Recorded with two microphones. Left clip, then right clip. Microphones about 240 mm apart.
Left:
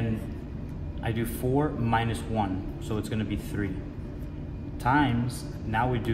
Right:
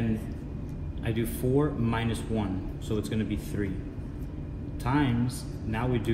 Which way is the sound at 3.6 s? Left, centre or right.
Left.